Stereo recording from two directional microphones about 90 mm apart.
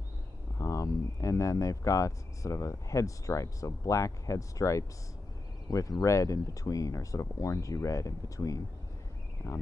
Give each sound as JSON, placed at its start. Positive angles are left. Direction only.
{"t": 0.6, "sound": "speech", "side_deg": 35}